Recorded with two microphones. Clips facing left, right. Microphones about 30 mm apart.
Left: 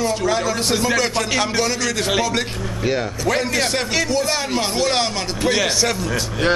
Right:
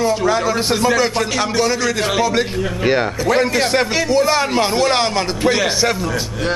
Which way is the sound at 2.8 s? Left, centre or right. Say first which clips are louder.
Right 5 dB; right.